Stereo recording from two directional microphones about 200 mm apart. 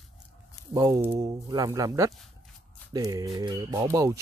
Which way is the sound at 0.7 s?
15° right (ahead or behind).